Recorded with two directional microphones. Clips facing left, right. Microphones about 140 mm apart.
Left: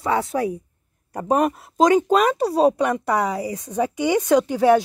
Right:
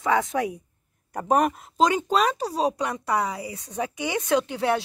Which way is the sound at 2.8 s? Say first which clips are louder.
Left 5 dB; 50° left (ahead or behind).